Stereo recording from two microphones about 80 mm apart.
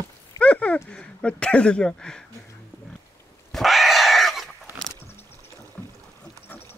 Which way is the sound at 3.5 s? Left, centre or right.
Centre.